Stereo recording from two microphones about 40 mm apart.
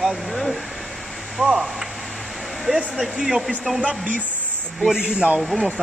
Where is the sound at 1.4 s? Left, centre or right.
Centre.